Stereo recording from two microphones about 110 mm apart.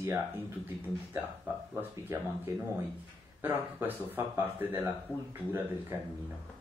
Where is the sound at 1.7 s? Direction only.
20° right (ahead or behind).